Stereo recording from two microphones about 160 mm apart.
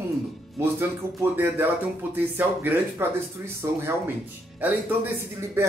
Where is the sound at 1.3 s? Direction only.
10° right (ahead or behind).